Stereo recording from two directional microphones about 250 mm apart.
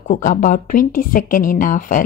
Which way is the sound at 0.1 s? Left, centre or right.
Left.